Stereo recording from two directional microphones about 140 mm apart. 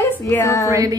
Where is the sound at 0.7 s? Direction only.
25° right (ahead or behind).